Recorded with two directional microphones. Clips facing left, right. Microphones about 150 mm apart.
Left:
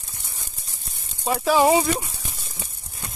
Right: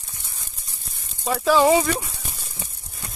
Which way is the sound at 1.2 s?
15° left (ahead or behind).